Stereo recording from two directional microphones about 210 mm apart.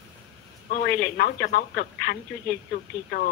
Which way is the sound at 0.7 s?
45° left (ahead or behind).